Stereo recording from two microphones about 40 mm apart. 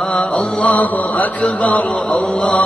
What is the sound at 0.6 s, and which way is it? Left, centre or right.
Mantra, left.